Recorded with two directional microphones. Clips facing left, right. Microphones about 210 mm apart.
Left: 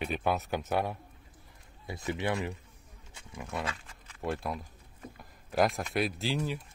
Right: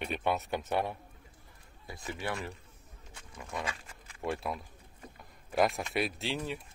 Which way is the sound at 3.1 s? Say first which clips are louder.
Left 3 dB; 10° left (ahead or behind).